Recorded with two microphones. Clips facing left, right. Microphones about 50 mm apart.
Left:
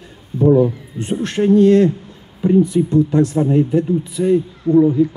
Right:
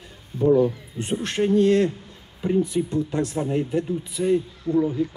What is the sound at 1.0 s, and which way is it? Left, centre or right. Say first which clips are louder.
Speech: left 7 dB; centre.